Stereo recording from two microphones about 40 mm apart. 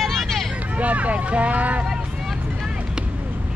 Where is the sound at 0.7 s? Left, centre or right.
Right.